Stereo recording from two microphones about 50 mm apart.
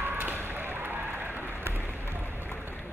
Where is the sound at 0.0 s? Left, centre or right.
Right.